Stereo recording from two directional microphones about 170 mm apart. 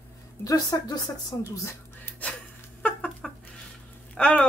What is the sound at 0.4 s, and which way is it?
Speech, 20° left (ahead or behind).